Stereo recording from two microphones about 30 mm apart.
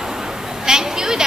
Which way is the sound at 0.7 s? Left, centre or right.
Right.